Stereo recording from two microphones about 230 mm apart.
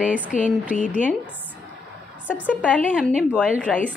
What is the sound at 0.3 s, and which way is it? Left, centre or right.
Speech, left.